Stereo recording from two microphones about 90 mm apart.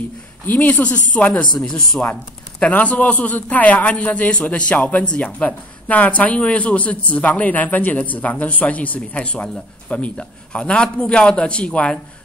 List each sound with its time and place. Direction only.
0.5 s speech: 20° left (ahead or behind)
2.6 s speech: 15° left (ahead or behind)